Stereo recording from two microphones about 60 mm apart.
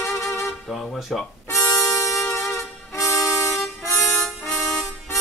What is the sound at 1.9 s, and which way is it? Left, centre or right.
Music, left.